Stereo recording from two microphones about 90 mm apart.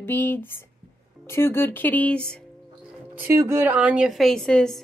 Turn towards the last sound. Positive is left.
turn(degrees=5)  # may be behind; listen again after turning